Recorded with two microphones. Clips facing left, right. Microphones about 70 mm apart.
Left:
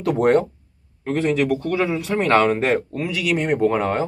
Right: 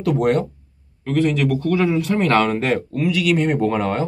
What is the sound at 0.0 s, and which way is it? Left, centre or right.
Speech, left.